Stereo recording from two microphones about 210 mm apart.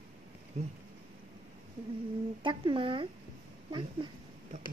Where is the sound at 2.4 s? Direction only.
25° right (ahead or behind).